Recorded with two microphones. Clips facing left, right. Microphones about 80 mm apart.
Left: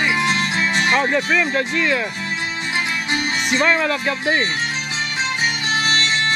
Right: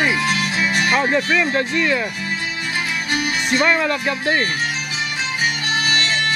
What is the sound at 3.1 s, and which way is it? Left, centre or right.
Speech, centre.